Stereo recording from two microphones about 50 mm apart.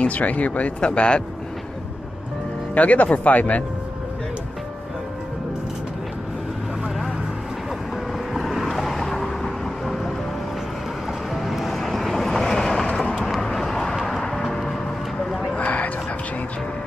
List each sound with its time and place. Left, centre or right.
0.0 s speech: left
2.7 s speech: left
8.3 s vehicle: centre
11.3 s vehicle: centre
15.6 s music: left